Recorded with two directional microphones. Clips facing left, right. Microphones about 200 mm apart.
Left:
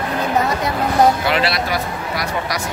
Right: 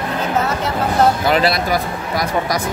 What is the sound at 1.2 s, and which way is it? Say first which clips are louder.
Speech: right 3 dB; 45° right (ahead or behind).